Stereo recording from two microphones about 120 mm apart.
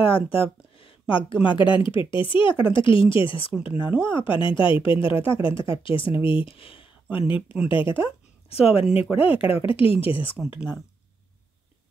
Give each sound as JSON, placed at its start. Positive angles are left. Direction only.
{"t": 0.0, "sound": "speech", "side_deg": 50}
{"t": 3.5, "sound": "speech", "side_deg": -10}
{"t": 4.1, "sound": "speech", "side_deg": 45}
{"t": 8.5, "sound": "speech", "side_deg": 55}